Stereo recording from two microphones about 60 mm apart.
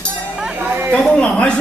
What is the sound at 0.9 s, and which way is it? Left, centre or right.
Speech, centre.